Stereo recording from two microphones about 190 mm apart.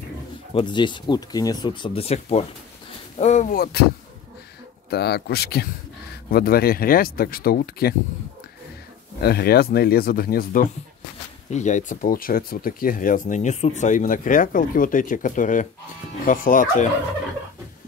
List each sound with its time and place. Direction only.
0.6 s speech: 25° left (ahead or behind); by 3.8 s 50° left (ahead or behind)
4.8 s speech: 55° left (ahead or behind)
9.2 s speech: 55° left (ahead or behind)